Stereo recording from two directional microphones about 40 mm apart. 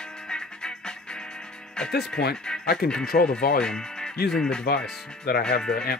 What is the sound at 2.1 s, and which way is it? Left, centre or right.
Speech, centre.